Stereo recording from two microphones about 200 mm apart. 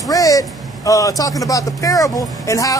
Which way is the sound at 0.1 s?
15° left (ahead or behind).